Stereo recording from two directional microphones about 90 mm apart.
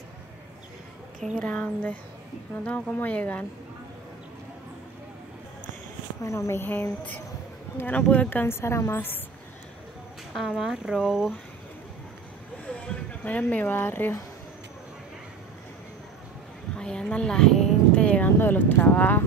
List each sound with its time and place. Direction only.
1.4 s speech: 15° left (ahead or behind)
6.2 s a woman's voice: 35° left (ahead or behind)
10.3 s speech: centre (ahead or behind)
12.6 s speech: 15° left (ahead or behind)
16.7 s a sound: 10° left (ahead or behind)
18.4 s a woman's voice: 20° left (ahead or behind)